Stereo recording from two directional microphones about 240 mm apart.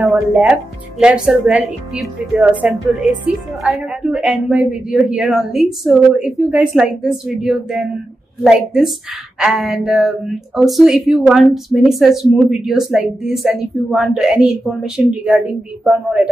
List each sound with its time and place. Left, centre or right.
0.0 s speech: centre